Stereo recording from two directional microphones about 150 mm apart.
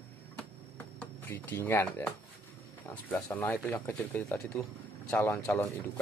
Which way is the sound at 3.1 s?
10° left (ahead or behind).